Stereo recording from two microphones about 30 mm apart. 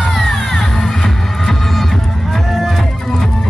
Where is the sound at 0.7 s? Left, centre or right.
Centre.